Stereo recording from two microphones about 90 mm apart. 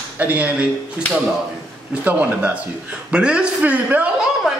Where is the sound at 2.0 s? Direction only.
20° right (ahead or behind).